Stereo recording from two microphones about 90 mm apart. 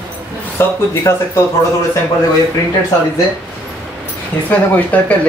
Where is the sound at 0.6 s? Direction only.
25° left (ahead or behind).